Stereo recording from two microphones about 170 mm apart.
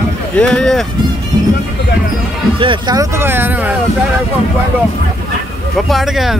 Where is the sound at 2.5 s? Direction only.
25° right (ahead or behind); by 3.8 s 10° right (ahead or behind).